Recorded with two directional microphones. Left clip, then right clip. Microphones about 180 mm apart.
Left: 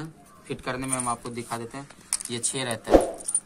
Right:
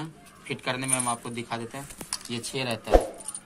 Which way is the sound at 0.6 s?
Centre (ahead or behind).